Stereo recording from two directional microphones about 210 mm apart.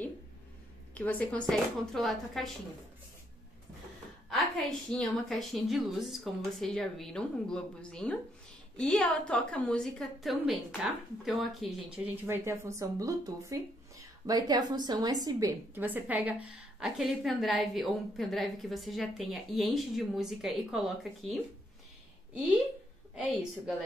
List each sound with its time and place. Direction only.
0.9 s a woman's voice: 5° left (ahead or behind)
4.3 s speech: centre (ahead or behind)